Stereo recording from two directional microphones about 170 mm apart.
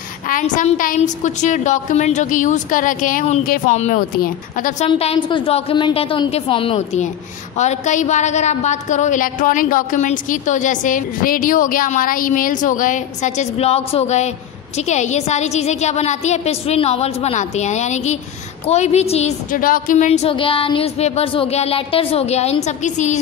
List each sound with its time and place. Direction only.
0.3 s a woman's voice: 45° left (ahead or behind)
4.8 s a woman's voice: 35° left (ahead or behind)